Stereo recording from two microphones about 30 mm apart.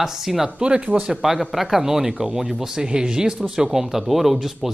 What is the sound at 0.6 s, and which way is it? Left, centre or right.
Speech, right.